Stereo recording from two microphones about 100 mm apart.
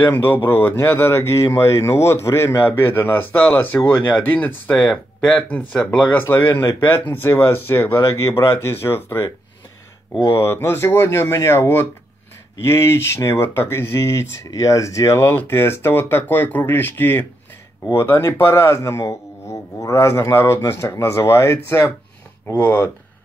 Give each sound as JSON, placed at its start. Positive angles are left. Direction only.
{"t": 0.0, "sound": "speech", "side_deg": 20}
{"t": 10.2, "sound": "speech", "side_deg": 25}